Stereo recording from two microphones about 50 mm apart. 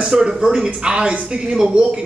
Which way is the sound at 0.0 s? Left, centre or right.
Centre.